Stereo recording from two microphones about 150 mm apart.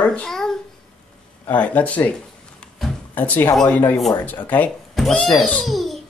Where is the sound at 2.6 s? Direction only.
10° left (ahead or behind).